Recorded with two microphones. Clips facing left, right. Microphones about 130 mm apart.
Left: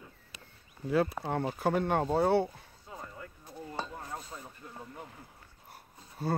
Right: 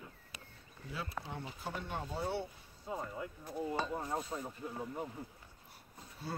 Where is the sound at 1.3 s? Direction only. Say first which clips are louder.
Left 13 dB; 65° left (ahead or behind).